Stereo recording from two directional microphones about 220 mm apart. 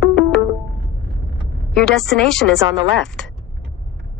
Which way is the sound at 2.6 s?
20° right (ahead or behind).